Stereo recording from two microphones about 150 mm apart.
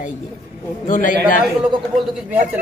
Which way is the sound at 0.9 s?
60° left (ahead or behind).